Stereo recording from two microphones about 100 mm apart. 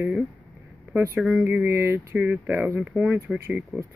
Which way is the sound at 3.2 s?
30° right (ahead or behind).